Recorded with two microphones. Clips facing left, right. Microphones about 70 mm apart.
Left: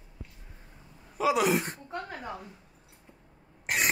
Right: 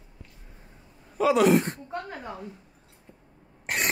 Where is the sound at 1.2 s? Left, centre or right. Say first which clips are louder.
Right 5 dB; centre.